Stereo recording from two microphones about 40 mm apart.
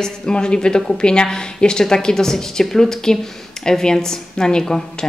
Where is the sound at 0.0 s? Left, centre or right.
Left.